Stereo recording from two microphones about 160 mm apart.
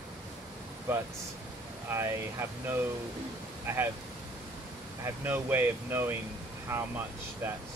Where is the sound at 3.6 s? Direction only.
15° right (ahead or behind).